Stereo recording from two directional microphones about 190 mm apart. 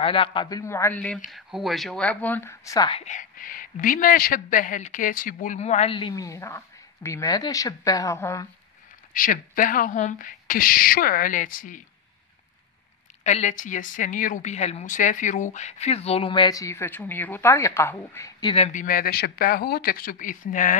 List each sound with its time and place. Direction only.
0.0 s a man's voice: 30° left (ahead or behind)
2.9 s a woman's voice: 35° left (ahead or behind); by 8.5 s 15° left (ahead or behind)
9.1 s speech: 45° left (ahead or behind)
13.2 s a woman's voice: 35° left (ahead or behind); by 18.5 s 15° left (ahead or behind)
18.5 s speech: 35° left (ahead or behind)